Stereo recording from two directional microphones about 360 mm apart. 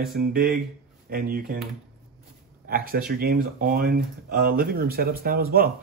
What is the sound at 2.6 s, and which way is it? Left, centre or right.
Speech, right.